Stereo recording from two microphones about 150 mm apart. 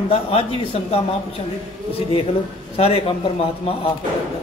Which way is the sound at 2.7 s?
40° left (ahead or behind).